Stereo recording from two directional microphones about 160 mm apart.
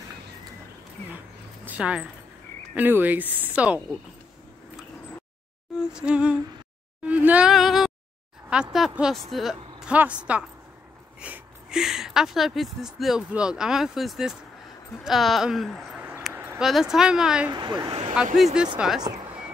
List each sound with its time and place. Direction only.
1.7 s speech: 5° right (ahead or behind)
5.8 s a sound: 5° right (ahead or behind)
7.1 s a woman's voice: 10° right (ahead or behind)
16.3 s a sound: 15° right (ahead or behind)
16.6 s speech: centre (ahead or behind)
17.5 s speech: 25° right (ahead or behind)
18.3 s speech: 5° right (ahead or behind)
18.9 s speech: 25° right (ahead or behind)